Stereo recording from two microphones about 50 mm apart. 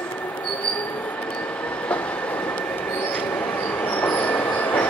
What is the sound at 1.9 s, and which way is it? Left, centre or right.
Train, left.